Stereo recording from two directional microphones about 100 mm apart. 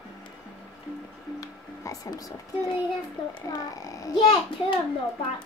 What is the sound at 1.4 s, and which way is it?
Music, 35° left (ahead or behind).